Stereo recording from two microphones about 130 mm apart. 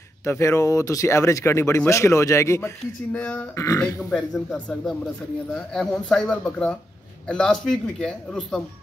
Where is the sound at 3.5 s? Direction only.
25° left (ahead or behind).